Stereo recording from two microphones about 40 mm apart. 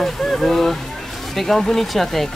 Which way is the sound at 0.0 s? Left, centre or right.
Centre.